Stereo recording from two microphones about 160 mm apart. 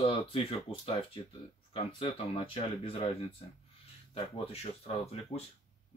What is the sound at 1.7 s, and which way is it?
Speech, 35° left (ahead or behind).